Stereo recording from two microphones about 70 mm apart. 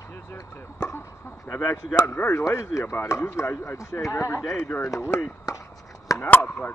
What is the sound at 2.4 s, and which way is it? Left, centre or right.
Speech, left.